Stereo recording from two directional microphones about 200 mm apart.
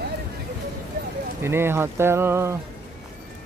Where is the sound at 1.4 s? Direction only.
10° right (ahead or behind).